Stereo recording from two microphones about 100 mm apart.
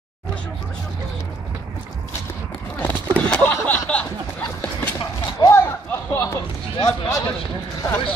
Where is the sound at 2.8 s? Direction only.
20° left (ahead or behind).